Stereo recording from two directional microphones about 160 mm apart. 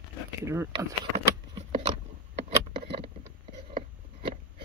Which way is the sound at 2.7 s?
90° right.